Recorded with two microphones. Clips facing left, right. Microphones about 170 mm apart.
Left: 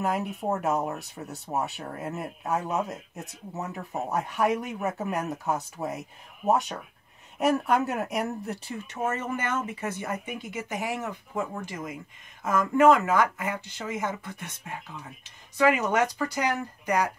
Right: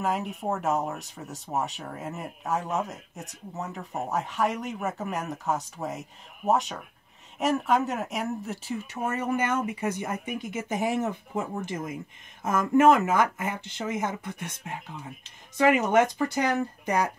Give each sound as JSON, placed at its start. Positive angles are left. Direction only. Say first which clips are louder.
{"t": 0.0, "sound": "speech", "louder": "left 1 dB", "side_deg": 0}
{"t": 9.1, "sound": "speech", "louder": "right 3 dB", "side_deg": -15}